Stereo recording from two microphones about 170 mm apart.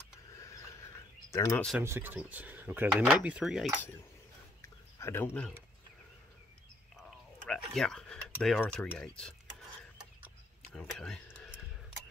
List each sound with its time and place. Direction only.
1.3 s speech: 15° left (ahead or behind)
1.8 s speech: 10° right (ahead or behind)
4.6 s a sound: 15° left (ahead or behind)
7.0 s drip: centre (ahead or behind)
8.4 s speech: centre (ahead or behind)
9.8 s a sound: 5° right (ahead or behind)
10.7 s speech: 5° left (ahead or behind)